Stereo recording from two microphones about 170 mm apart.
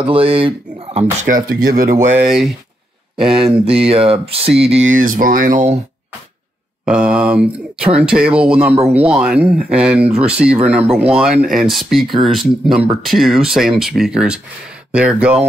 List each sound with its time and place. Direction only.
0.0 s speech: 30° right (ahead or behind)
1.2 s speech: 60° right (ahead or behind)
2.1 s speech: 5° right (ahead or behind)
3.3 s speech: 35° right (ahead or behind)
6.9 s speech: 5° right (ahead or behind)